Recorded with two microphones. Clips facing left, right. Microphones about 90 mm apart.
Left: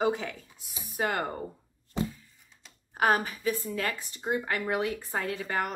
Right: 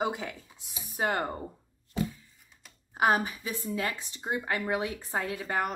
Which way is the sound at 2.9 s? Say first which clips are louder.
Even; 20° right (ahead or behind).